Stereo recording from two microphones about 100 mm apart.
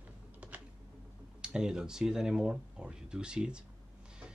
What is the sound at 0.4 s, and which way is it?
Typing, 15° right (ahead or behind).